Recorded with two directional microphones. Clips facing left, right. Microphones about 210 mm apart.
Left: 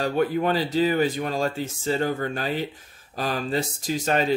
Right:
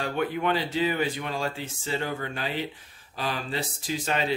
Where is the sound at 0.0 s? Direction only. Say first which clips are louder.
Left 5 dB; 40° left (ahead or behind).